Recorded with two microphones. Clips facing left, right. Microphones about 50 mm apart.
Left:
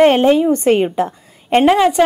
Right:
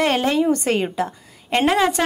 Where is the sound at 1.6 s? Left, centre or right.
Centre.